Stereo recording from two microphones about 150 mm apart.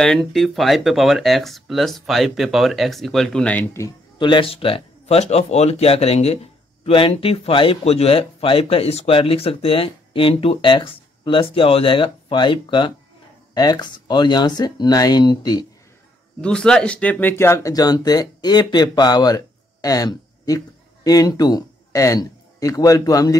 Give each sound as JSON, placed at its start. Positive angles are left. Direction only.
{"t": 0.0, "sound": "speech", "side_deg": 5}
{"t": 4.2, "sound": "speech", "side_deg": 35}
{"t": 16.3, "sound": "speech", "side_deg": 5}